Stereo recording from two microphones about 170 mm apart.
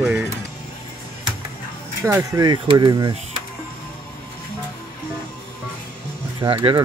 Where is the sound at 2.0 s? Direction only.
15° right (ahead or behind).